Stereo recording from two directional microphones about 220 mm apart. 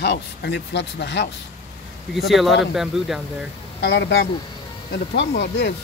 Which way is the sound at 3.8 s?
50° left (ahead or behind).